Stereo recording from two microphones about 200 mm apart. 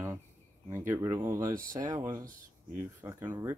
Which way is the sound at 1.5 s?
40° right (ahead or behind).